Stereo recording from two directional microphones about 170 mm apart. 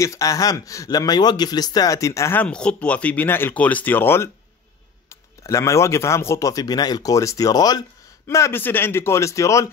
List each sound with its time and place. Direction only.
0.0 s a man's voice: 20° left (ahead or behind)